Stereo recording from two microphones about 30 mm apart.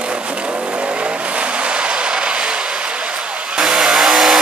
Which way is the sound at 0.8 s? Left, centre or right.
Right.